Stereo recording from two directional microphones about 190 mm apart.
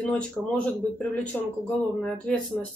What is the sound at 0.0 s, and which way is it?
Speech, 5° left (ahead or behind).